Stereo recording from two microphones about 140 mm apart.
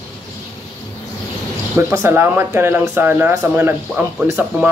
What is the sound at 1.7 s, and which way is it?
Speech, 15° right (ahead or behind).